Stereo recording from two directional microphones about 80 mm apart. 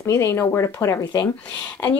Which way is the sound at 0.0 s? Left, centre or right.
Left.